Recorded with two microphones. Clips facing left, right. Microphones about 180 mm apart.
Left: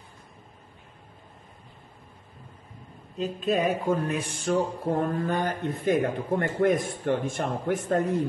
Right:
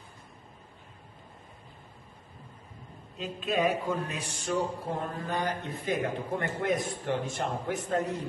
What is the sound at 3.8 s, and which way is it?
A man's voice, 55° left (ahead or behind).